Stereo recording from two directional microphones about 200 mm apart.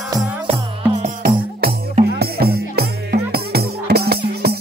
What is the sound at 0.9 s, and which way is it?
Music, 35° right (ahead or behind).